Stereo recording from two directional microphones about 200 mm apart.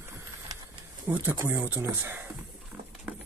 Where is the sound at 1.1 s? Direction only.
10° right (ahead or behind).